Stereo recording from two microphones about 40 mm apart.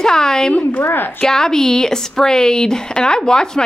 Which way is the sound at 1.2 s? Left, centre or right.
Centre.